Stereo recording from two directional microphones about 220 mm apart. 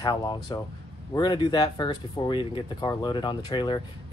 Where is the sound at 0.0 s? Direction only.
20° left (ahead or behind).